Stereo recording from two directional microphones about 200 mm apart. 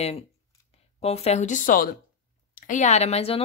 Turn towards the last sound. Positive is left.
turn(degrees=30)  # may be behind; listen again after turning